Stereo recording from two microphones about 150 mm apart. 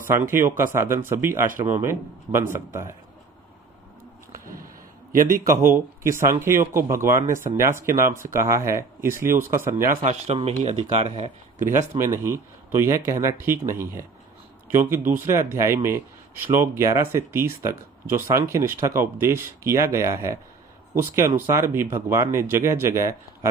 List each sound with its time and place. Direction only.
0.1 s speech: 15° right (ahead or behind)
5.7 s speech: 15° right (ahead or behind)
10.0 s speech: 45° right (ahead or behind)
11.6 s speech: 55° right (ahead or behind)
12.0 s speech: 15° right (ahead or behind)